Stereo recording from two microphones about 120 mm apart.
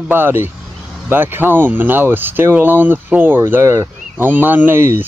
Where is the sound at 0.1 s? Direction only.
20° right (ahead or behind).